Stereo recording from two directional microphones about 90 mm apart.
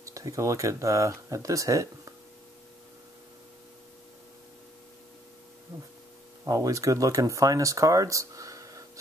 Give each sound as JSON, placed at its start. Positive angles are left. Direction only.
{"t": 0.0, "sound": "speech", "side_deg": -35}
{"t": 6.4, "sound": "speech", "side_deg": -40}